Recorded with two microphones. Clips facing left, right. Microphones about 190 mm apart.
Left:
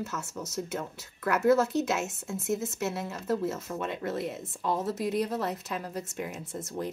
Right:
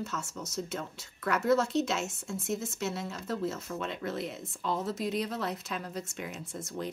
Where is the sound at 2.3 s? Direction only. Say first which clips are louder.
Left 4 dB; 5° left (ahead or behind).